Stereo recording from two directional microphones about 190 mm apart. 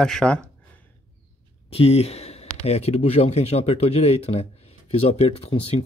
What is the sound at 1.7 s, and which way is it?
Speech, 30° left (ahead or behind).